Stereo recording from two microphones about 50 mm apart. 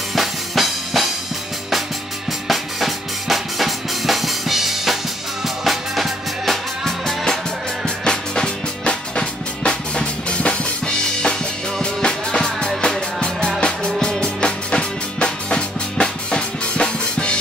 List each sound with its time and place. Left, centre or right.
0.1 s music: centre
2.4 s music: centre